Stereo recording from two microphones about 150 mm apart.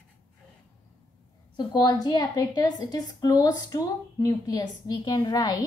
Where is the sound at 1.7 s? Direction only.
30° left (ahead or behind).